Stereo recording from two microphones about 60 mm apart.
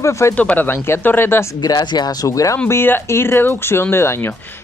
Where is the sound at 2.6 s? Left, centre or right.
Left.